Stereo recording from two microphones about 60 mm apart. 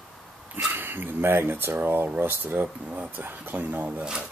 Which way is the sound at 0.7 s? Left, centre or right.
Right.